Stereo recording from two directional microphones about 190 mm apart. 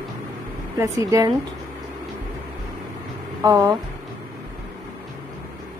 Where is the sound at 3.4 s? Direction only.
20° right (ahead or behind).